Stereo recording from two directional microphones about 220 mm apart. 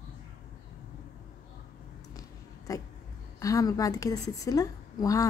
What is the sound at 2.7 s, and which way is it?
A woman's voice, 15° left (ahead or behind).